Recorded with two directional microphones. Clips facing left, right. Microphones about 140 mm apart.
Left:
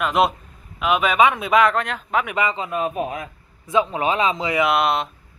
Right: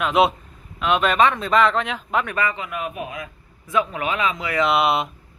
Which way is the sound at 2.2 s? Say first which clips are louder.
Left 1 dB; 15° left (ahead or behind).